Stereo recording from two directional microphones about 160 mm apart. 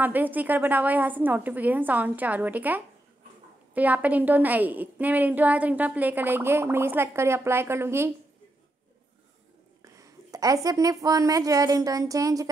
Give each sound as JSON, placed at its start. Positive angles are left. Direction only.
{"t": 0.0, "sound": "a woman's voice", "side_deg": -10}
{"t": 9.9, "sound": "a woman's voice", "side_deg": -20}